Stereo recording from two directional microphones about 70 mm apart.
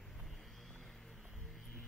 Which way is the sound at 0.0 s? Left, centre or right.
Centre.